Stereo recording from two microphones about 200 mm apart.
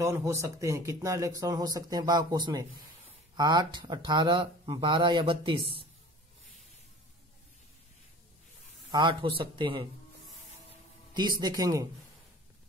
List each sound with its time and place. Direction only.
0.0 s speech: 15° right (ahead or behind)
8.9 s speech: 25° right (ahead or behind)
11.1 s speech: 20° right (ahead or behind)